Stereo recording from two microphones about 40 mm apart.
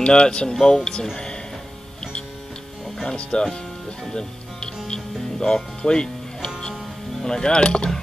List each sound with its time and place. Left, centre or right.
0.0 s speech: left
0.6 s speech: centre
1.1 s music: centre
3.2 s speech: left
4.1 s music: centre
7.2 s speech: centre